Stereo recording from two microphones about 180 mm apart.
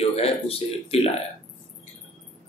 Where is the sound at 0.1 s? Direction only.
35° left (ahead or behind).